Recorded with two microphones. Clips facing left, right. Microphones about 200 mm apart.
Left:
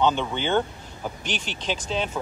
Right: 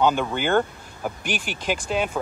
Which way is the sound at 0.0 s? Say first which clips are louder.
Right 2 dB; 10° right (ahead or behind).